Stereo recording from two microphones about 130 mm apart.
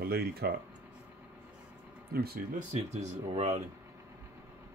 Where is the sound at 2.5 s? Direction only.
65° right (ahead or behind).